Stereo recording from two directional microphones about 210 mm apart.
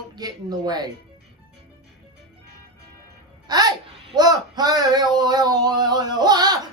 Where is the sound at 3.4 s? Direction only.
20° right (ahead or behind).